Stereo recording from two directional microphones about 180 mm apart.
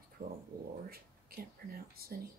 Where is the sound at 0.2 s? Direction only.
50° right (ahead or behind).